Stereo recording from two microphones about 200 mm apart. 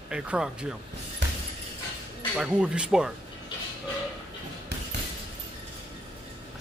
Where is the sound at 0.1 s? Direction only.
5° right (ahead or behind).